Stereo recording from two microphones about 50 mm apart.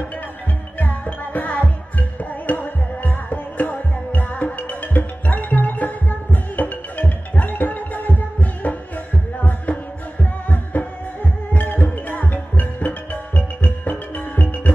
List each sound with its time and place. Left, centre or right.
0.7 s music: left